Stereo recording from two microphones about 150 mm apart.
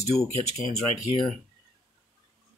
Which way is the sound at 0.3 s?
50° left (ahead or behind).